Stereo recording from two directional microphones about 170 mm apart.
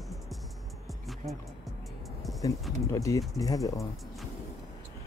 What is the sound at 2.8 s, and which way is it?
Speech, 20° left (ahead or behind).